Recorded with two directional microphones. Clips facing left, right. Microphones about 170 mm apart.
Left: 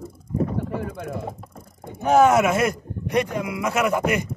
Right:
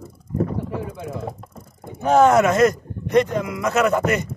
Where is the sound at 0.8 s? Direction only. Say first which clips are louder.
Even; 55° left (ahead or behind).